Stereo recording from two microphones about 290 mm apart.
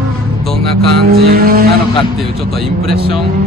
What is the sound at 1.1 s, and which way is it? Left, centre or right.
Speech, right.